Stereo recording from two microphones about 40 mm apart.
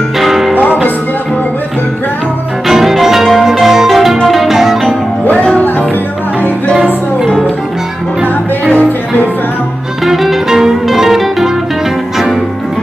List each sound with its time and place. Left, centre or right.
0.2 s music: centre
2.7 s music: centre
5.5 s music: left
8.7 s music: left
10.0 s music: centre